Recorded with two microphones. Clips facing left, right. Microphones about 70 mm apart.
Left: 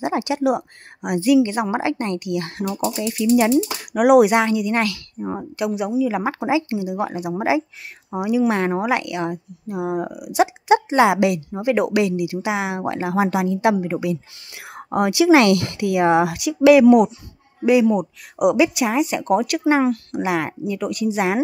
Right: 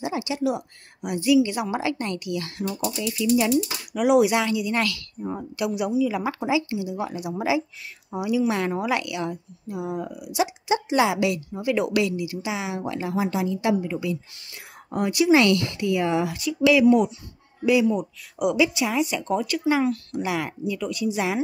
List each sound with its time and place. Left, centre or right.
0.0 s a woman's voice: left
2.7 s a woman's voice: left
4.0 s a woman's voice: left
6.7 s a woman's voice: left
12.2 s speech: left
14.5 s speech: left
17.6 s a woman's voice: left
18.4 s speech: left
19.7 s a woman's voice: left